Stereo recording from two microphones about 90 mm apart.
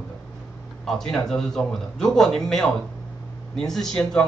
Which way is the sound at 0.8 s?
5° left (ahead or behind).